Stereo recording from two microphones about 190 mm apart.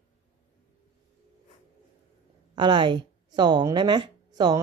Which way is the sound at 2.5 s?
25° right (ahead or behind).